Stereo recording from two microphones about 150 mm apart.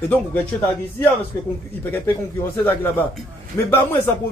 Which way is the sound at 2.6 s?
15° left (ahead or behind).